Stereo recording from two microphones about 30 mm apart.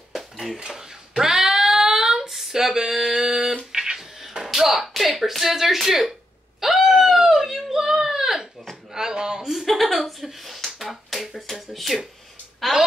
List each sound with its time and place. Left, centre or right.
0.6 s a sound: right
3.0 s music: centre
3.7 s a sound: centre
5.4 s speech: centre
6.6 s wail: centre
7.7 s a sound: centre
9.7 s a woman's voice: centre
10.8 s finger snapping: centre
11.7 s a woman's voice: centre